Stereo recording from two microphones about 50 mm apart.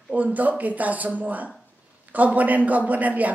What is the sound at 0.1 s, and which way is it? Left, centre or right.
A woman's voice, right.